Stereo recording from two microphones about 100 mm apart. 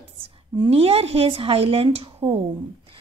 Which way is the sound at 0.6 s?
80° right.